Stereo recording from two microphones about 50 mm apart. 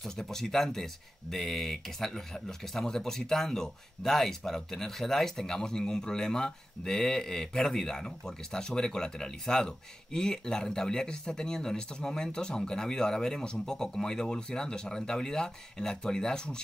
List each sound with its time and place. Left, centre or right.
0.0 s speech: centre